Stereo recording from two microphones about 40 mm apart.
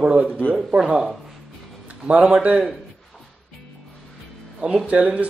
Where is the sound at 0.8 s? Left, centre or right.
Centre.